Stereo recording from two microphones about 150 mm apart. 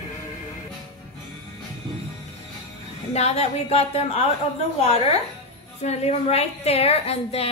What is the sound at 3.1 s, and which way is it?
A woman's voice, 45° left (ahead or behind).